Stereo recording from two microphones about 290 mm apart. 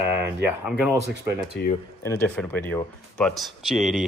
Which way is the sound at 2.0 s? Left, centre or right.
Centre.